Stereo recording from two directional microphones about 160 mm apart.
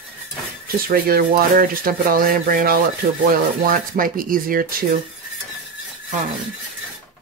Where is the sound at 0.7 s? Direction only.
65° right (ahead or behind).